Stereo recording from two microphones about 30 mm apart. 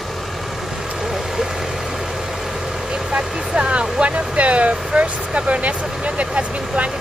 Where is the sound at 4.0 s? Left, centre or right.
Right.